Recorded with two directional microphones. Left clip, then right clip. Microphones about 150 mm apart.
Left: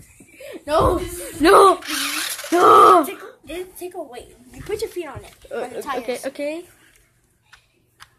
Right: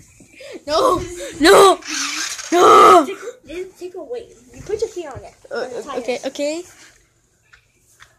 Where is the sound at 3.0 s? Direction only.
50° left (ahead or behind).